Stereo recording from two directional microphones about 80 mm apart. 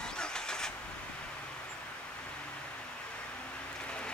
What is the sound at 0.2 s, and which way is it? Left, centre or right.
Vehicle, centre.